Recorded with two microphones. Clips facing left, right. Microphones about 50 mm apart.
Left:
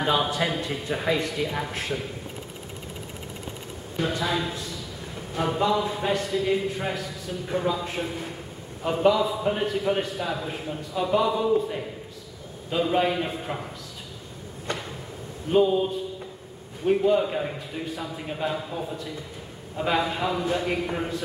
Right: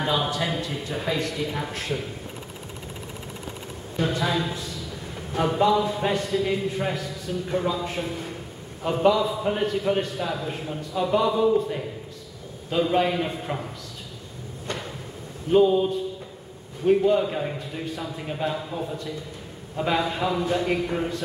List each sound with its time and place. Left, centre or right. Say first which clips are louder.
0.0 s speech: left 1 dB; centre
4.2 s a man's voice: right 1 dB; centre
15.5 s a man's voice: right 2 dB; centre